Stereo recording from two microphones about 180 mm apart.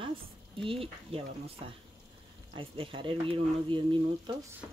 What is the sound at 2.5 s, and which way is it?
Speech, 30° right (ahead or behind).